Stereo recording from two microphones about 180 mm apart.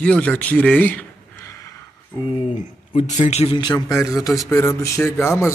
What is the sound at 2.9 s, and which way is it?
Speech, 40° left (ahead or behind).